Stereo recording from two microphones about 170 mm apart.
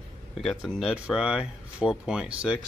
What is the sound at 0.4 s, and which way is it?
Speech, centre (ahead or behind).